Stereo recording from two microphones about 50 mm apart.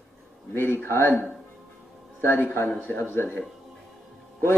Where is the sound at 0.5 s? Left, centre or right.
Left.